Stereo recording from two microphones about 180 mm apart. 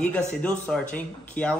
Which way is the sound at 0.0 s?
10° left (ahead or behind).